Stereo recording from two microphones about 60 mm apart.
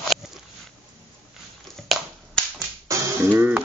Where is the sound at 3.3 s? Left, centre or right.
Right.